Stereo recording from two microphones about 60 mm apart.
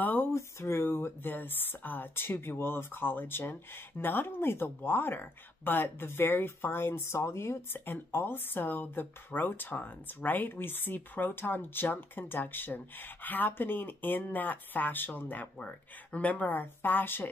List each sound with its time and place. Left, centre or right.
0.0 s a sound: left
0.3 s speech: left
7.8 s speech: left